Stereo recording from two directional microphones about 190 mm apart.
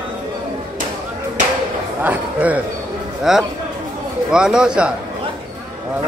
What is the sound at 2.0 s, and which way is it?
A man's voice, 10° right (ahead or behind).